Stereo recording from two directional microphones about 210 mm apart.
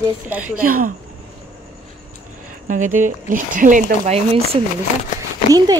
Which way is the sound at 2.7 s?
40° right (ahead or behind).